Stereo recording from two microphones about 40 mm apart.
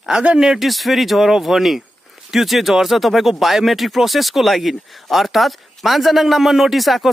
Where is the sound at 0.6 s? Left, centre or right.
Centre.